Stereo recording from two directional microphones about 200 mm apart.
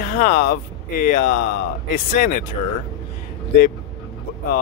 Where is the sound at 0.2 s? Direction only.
40° left (ahead or behind).